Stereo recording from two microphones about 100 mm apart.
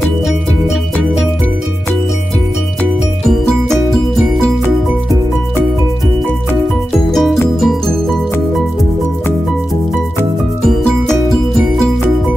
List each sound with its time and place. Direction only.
6.9 s music: centre (ahead or behind)
10.7 s music: centre (ahead or behind)